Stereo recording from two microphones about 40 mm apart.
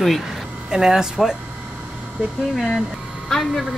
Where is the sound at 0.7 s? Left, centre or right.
Centre.